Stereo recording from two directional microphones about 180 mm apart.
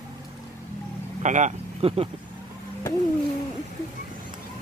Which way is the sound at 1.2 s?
40° right (ahead or behind).